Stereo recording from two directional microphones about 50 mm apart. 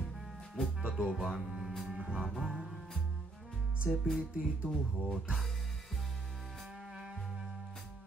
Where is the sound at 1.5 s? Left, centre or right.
Centre.